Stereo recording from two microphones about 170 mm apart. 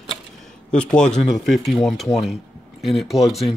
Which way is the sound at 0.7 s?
5° left (ahead or behind).